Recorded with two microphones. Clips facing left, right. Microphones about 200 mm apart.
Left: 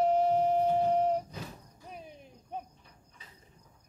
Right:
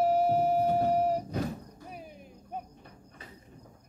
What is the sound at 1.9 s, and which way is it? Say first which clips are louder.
Cricket: even; 5° right (ahead or behind).